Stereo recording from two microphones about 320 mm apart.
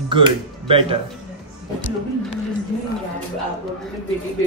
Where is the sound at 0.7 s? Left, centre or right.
Centre.